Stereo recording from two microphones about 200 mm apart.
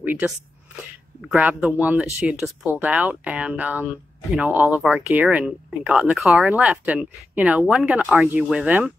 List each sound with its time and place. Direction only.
0.0 s speech: 10° right (ahead or behind)